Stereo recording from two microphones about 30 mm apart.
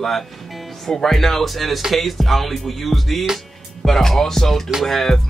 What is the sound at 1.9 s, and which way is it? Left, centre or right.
Music, centre.